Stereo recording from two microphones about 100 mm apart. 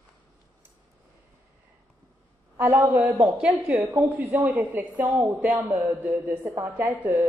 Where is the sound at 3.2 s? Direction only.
10° right (ahead or behind).